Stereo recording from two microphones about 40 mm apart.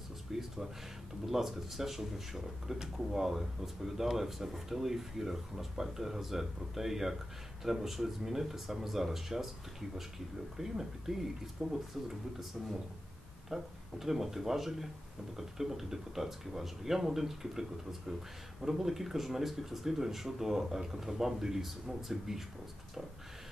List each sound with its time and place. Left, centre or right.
0.3 s a sound: centre
1.2 s speech: centre
13.5 s speech: centre